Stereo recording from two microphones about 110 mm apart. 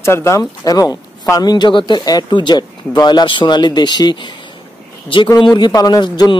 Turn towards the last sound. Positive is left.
turn(degrees=40)  # may be behind; listen again after turning